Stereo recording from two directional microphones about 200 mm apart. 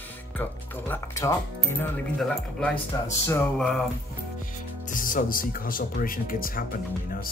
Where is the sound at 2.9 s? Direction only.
15° left (ahead or behind).